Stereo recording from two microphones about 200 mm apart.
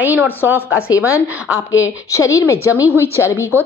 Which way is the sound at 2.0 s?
15° left (ahead or behind).